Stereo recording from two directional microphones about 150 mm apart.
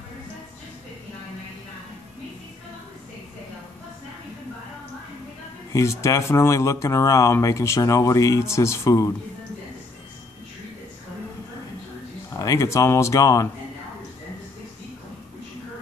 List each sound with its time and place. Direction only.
5.7 s speech: 20° left (ahead or behind)
12.4 s speech: 20° left (ahead or behind)